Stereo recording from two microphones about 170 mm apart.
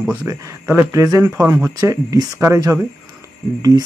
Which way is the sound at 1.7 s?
20° right (ahead or behind).